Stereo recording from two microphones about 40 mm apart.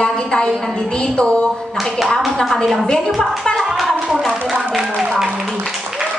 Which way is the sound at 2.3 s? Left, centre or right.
Centre.